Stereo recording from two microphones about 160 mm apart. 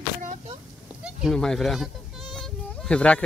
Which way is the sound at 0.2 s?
50° right (ahead or behind).